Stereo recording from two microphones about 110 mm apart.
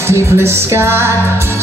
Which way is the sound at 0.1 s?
25° right (ahead or behind).